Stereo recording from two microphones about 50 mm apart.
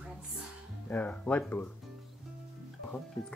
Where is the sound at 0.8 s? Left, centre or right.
Left.